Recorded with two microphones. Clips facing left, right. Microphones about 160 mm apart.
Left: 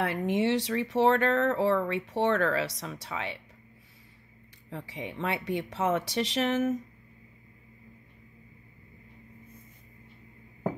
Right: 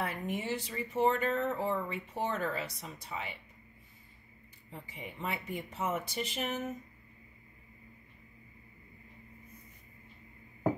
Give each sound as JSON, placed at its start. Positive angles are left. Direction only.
{"t": 0.0, "sound": "speech", "side_deg": 80}
{"t": 4.6, "sound": "speech", "side_deg": 85}